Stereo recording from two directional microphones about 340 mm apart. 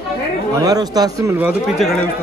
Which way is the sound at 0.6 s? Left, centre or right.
Centre.